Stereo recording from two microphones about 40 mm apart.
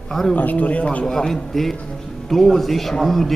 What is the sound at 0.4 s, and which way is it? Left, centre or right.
Speech, left.